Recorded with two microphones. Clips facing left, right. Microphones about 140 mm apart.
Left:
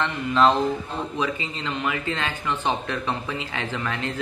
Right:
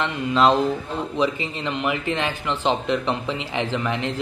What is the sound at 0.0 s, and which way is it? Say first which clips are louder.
Speech: right 1 dB; 15° right (ahead or behind).